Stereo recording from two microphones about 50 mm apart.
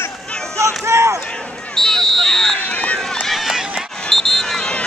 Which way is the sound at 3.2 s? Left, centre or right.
Centre.